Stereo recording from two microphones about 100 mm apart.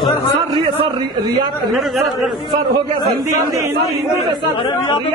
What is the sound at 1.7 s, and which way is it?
Speech, centre (ahead or behind).